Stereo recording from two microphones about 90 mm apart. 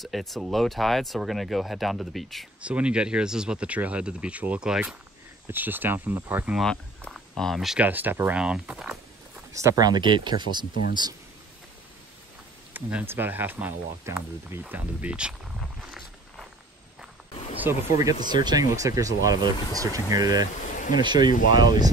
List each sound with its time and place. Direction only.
0.0 s speech: centre (ahead or behind)
2.6 s speech: 15° right (ahead or behind)
5.5 s speech: 20° right (ahead or behind)
7.1 s speech: 5° left (ahead or behind)
7.8 s speech: 20° right (ahead or behind)
8.4 s speech: 10° right (ahead or behind)
9.5 s speech: 35° right (ahead or behind); by 11.1 s 55° right (ahead or behind)
12.7 s speech: 25° right (ahead or behind)
17.6 s speech: 25° right (ahead or behind)
18.2 s speech: 50° right (ahead or behind)
20.9 s speech: 55° right (ahead or behind)